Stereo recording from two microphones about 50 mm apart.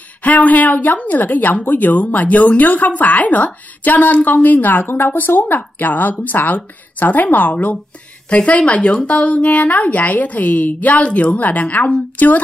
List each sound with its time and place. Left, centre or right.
0.2 s a woman's voice: left